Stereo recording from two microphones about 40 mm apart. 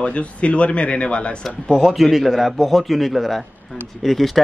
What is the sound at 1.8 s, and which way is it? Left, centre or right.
A man's voice, centre.